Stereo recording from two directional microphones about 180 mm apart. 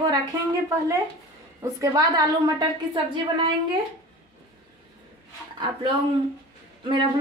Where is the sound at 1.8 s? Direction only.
20° right (ahead or behind).